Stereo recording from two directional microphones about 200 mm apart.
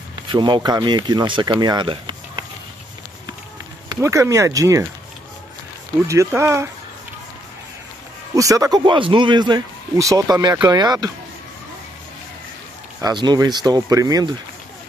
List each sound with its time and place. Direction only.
0.3 s speech: 20° right (ahead or behind)
3.9 s speech: 15° right (ahead or behind)
6.0 s speech: 15° right (ahead or behind)
8.4 s speech: 15° right (ahead or behind)
13.0 s speech: 20° right (ahead or behind)